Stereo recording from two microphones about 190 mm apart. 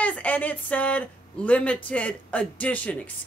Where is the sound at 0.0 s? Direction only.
10° left (ahead or behind).